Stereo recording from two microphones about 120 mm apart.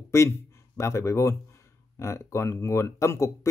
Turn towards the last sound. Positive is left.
turn(degrees=25)  # may be behind; listen again after turning